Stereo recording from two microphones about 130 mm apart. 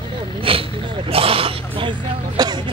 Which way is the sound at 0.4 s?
45° right (ahead or behind).